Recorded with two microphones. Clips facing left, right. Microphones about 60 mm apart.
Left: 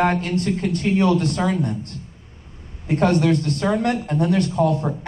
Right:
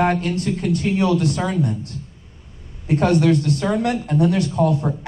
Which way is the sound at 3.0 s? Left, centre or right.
Centre.